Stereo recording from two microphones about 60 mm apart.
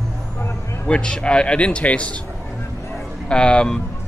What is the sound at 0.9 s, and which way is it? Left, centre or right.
Speech, centre.